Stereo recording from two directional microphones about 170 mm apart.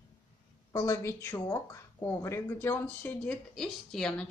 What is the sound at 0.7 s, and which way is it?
Speech, 15° left (ahead or behind).